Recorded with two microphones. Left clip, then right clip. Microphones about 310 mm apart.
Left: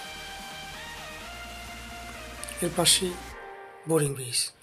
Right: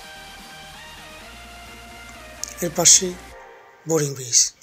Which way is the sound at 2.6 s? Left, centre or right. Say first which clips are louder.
Right 7 dB; centre.